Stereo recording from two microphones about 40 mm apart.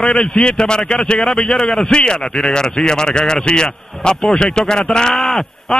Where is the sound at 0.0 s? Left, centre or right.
Centre.